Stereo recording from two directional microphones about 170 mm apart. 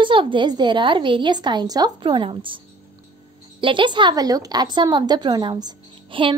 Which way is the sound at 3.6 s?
30° right (ahead or behind).